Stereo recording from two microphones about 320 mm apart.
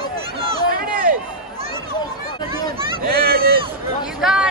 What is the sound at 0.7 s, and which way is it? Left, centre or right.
Run, right.